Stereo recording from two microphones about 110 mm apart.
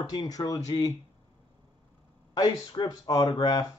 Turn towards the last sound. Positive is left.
turn(degrees=35)  # may be behind; listen again after turning